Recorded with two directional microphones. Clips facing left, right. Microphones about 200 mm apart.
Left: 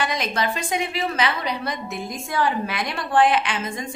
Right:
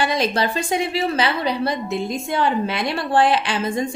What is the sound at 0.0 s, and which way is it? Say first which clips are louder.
A woman's voice: right 4 dB; 30° right (ahead or behind).